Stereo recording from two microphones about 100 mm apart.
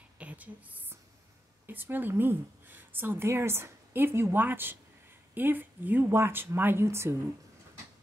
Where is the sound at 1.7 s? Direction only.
20° right (ahead or behind).